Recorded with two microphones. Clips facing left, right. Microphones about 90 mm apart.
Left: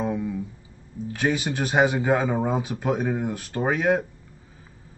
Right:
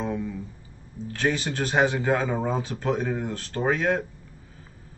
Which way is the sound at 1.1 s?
15° left (ahead or behind).